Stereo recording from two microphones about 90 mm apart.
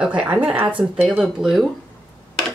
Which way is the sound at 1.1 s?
5° right (ahead or behind).